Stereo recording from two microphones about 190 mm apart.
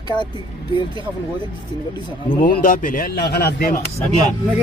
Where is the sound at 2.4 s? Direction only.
45° left (ahead or behind).